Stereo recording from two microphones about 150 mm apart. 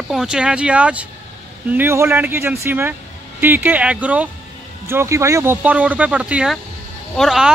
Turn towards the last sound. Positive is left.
turn(degrees=0)  # may be behind; listen again after turning